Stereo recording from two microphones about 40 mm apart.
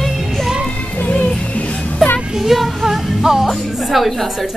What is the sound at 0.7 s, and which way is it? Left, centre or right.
Music, left.